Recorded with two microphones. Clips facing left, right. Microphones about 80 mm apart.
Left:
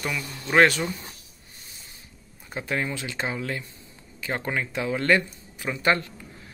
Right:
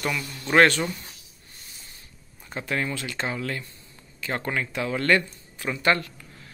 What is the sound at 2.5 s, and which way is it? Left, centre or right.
Speech, centre.